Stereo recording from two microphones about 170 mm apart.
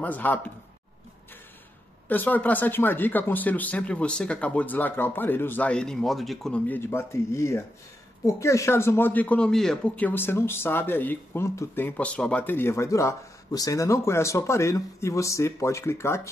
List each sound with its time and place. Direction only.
0.0 s speech: 10° left (ahead or behind)
2.0 s speech: 10° left (ahead or behind)